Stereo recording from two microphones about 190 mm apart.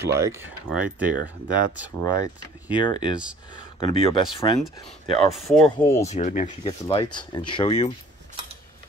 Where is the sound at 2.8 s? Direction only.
25° left (ahead or behind).